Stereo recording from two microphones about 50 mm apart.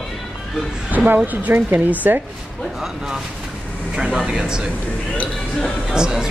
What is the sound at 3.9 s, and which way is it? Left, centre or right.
Speech, centre.